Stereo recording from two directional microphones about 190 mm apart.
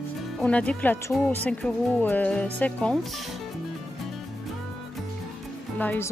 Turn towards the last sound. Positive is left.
turn(degrees=10)  # may be behind; listen again after turning